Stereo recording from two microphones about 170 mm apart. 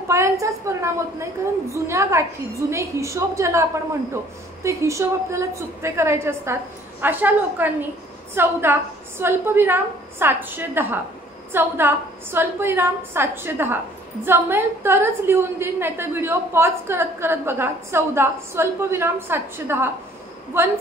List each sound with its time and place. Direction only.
0.1 s a woman's voice: 20° right (ahead or behind)
4.6 s a woman's voice: 15° right (ahead or behind)